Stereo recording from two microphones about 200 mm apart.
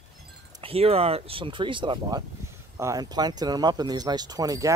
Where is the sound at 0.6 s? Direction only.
30° right (ahead or behind).